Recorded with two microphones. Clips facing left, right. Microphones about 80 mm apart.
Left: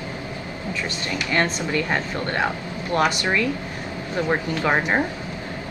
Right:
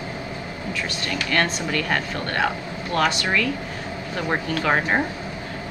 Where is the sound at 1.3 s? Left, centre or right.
Left.